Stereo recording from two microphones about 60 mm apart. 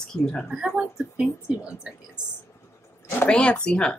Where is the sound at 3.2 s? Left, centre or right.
Centre.